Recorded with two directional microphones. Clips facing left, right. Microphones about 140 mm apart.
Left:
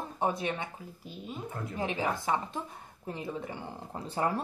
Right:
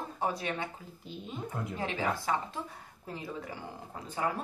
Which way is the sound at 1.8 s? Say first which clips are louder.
Left 2 dB; 20° left (ahead or behind).